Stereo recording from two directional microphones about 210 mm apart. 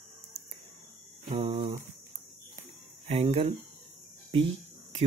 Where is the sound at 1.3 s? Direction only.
25° right (ahead or behind).